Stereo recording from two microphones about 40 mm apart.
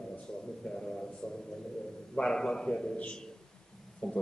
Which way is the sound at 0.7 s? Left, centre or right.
Centre.